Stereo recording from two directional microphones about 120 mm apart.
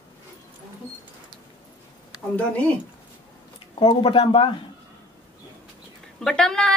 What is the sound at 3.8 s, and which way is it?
Speech, 45° left (ahead or behind).